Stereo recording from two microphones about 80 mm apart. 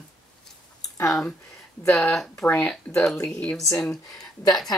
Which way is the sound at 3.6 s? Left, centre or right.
Left.